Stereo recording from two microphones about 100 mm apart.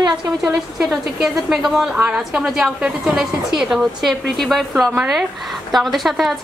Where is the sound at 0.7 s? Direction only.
5° right (ahead or behind).